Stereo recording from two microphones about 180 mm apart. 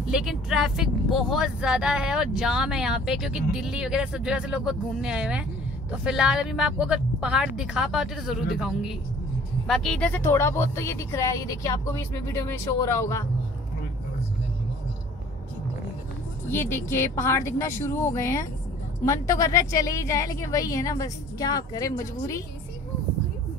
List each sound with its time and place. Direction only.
0.1 s a woman's voice: centre (ahead or behind); by 13.2 s 15° left (ahead or behind)
16.4 s a woman's voice: 15° left (ahead or behind)